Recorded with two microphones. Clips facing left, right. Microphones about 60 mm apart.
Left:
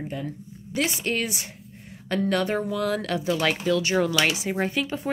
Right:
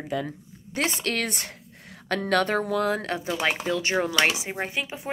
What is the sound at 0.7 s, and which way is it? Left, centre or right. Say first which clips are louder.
Speech: left 1 dB; right.